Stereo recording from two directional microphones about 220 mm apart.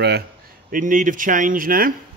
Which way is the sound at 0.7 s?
35° right (ahead or behind).